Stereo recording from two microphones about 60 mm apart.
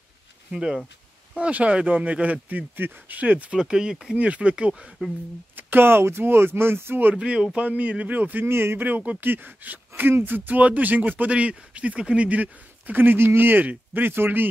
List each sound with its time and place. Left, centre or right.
0.5 s speech: centre
3.5 s speech: centre
5.6 s speech: right
7.2 s speech: centre
8.5 s speech: right
8.7 s speech: right